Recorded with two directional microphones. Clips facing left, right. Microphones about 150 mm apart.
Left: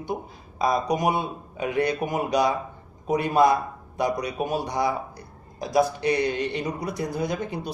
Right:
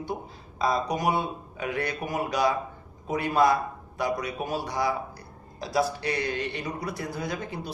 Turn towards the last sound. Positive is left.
turn(degrees=20)  # may be behind; listen again after turning